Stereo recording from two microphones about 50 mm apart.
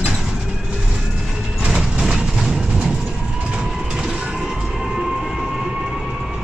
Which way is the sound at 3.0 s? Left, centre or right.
Centre.